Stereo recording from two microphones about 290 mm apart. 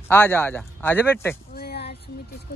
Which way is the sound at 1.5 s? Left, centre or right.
Left.